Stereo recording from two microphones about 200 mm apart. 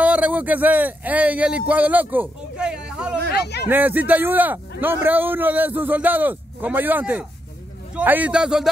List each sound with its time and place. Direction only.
0.0 s speech: 5° right (ahead or behind)
3.3 s a sound: 55° left (ahead or behind)
3.6 s a man's voice: 10° right (ahead or behind)